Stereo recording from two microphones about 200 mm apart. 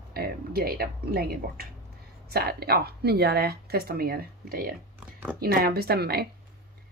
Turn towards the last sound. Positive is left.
turn(degrees=-55)  # may be behind; listen again after turning